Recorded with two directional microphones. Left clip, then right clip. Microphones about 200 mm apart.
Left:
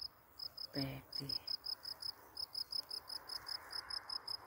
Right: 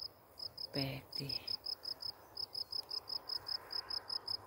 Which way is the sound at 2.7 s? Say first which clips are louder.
Right 2 dB; 40° left (ahead or behind).